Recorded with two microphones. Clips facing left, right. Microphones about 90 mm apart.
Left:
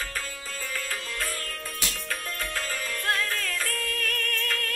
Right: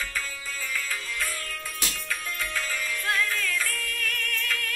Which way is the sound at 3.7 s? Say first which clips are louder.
Left 2 dB; 50° left (ahead or behind).